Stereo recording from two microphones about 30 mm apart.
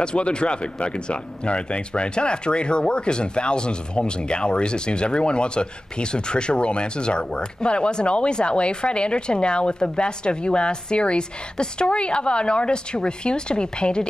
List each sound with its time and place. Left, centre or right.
0.0 s speech: left